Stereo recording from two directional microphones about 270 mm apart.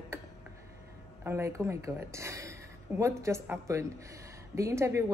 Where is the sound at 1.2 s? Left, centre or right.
Centre.